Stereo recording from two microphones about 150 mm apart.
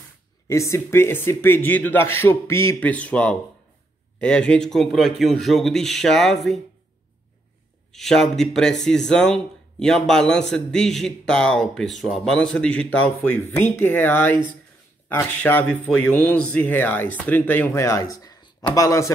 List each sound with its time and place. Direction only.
0.5 s speech: 20° left (ahead or behind); by 6.6 s centre (ahead or behind)
7.9 s speech: 5° left (ahead or behind); by 19.1 s 20° left (ahead or behind)